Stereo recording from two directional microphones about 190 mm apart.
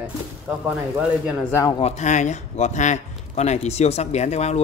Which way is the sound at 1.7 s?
35° left (ahead or behind).